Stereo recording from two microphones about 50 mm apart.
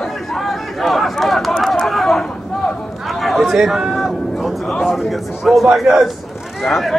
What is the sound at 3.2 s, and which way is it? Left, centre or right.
Chatter, centre.